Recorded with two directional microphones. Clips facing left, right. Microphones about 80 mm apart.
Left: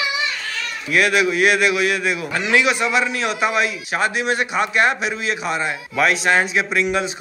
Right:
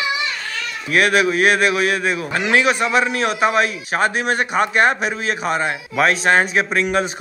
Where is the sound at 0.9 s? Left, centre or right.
Right.